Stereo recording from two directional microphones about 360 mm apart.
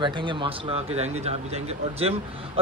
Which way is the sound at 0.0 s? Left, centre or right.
Centre.